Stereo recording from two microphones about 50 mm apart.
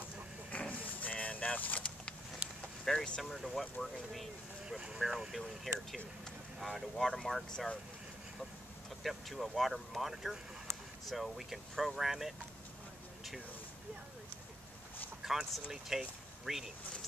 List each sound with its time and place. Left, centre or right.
0.5 s vehicle: left
2.8 s vehicle: centre
3.2 s speech: centre
4.6 s speech: centre
5.0 s speech: centre
9.0 s speech: centre
15.2 s a sound: centre
15.7 s speech: centre